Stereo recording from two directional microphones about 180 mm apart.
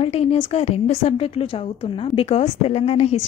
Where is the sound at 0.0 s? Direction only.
35° left (ahead or behind).